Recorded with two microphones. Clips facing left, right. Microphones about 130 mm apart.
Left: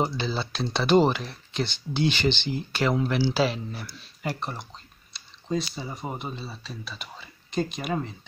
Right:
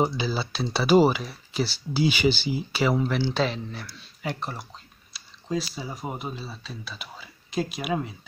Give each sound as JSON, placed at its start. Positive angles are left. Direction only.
{"t": 0.0, "sound": "speech", "side_deg": -5}